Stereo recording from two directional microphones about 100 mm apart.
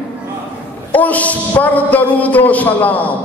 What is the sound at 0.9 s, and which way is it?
Mantra, 15° left (ahead or behind).